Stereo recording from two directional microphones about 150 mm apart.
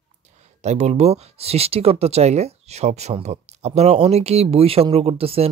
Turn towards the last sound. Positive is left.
turn(degrees=-40)  # may be behind; listen again after turning